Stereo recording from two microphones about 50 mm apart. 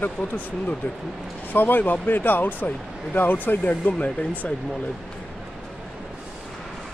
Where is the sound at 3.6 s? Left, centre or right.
Left.